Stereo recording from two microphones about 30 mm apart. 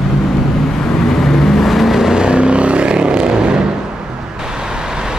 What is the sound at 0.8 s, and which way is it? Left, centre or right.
Vehicle, centre.